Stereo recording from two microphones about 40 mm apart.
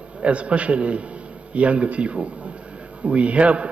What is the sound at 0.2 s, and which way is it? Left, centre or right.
A man's voice, right.